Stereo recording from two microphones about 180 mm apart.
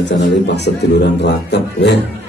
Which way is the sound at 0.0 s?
75° left (ahead or behind).